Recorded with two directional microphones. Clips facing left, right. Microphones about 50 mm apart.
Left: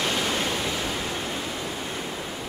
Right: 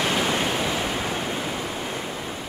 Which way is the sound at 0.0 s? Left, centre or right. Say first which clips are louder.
Right 3 dB; right.